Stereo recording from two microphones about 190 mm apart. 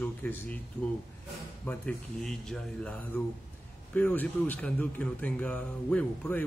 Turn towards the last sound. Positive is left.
turn(degrees=10)  # may be behind; listen again after turning